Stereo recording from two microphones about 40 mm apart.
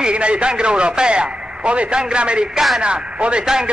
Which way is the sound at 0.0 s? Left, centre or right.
Right.